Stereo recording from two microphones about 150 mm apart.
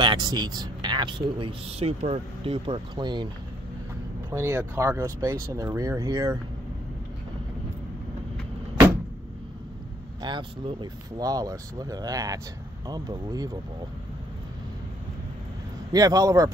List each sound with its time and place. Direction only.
0.0 s speech: 30° right (ahead or behind)
4.3 s speech: 20° right (ahead or behind)
10.2 s speech: 30° right (ahead or behind)
15.9 s speech: 25° right (ahead or behind)